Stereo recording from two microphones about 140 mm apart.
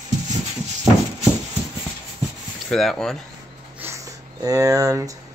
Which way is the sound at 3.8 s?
20° right (ahead or behind).